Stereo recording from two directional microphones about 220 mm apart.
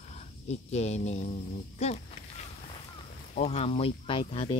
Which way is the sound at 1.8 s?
30° left (ahead or behind).